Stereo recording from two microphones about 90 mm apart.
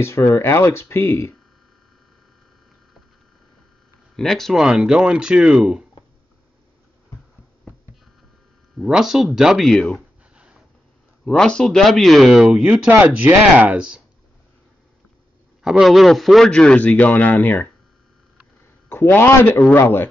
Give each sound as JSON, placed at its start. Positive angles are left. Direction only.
{"t": 0.0, "sound": "speech", "side_deg": 30}
{"t": 4.2, "sound": "speech", "side_deg": 5}
{"t": 8.7, "sound": "speech", "side_deg": -5}
{"t": 11.2, "sound": "speech", "side_deg": 10}
{"t": 12.4, "sound": "speech", "side_deg": -15}
{"t": 15.6, "sound": "a man's voice", "side_deg": -5}
{"t": 18.9, "sound": "speech", "side_deg": 25}